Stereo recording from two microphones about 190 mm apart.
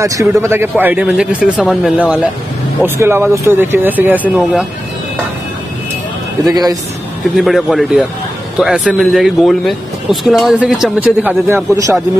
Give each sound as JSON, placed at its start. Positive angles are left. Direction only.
{"t": 0.0, "sound": "speech", "side_deg": -15}
{"t": 6.4, "sound": "a man's voice", "side_deg": -20}
{"t": 7.3, "sound": "speech", "side_deg": 0}
{"t": 11.4, "sound": "speech", "side_deg": -15}